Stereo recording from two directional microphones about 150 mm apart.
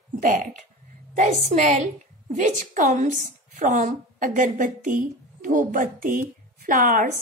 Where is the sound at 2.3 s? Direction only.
60° right (ahead or behind).